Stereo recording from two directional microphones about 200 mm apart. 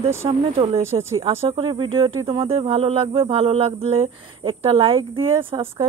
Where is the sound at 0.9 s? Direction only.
25° right (ahead or behind).